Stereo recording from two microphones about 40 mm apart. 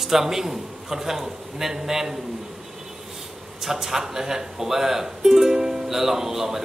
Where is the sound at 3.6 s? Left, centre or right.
Centre.